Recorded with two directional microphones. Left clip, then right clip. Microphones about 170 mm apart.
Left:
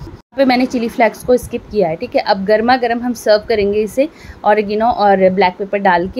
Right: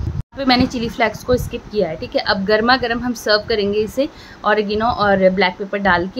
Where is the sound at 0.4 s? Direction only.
10° left (ahead or behind).